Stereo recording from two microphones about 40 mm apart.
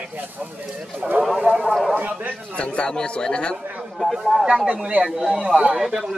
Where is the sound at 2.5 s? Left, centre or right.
Left.